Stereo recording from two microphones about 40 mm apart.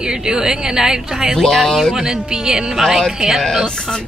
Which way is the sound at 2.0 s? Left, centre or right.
Centre.